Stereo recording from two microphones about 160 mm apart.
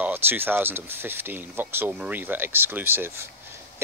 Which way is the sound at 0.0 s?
15° right (ahead or behind).